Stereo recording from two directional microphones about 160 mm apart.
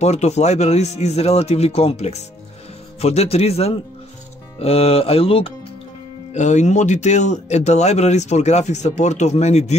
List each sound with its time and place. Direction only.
0.0 s speech: 45° left (ahead or behind)
6.3 s speech: 50° left (ahead or behind)